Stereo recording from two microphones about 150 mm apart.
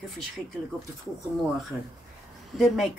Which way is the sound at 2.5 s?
Centre (ahead or behind).